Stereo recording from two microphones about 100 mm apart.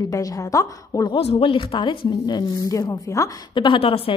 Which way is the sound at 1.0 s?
70° left (ahead or behind).